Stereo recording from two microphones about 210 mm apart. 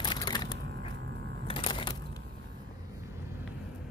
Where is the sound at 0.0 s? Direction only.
20° left (ahead or behind).